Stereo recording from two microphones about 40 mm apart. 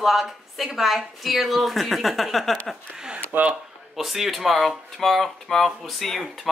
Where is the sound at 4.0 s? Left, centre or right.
Centre.